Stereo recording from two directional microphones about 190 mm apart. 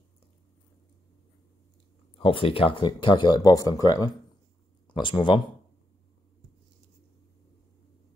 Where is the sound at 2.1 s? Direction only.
30° left (ahead or behind).